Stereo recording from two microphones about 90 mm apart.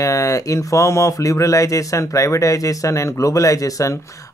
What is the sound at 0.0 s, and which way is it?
Speech, 35° left (ahead or behind).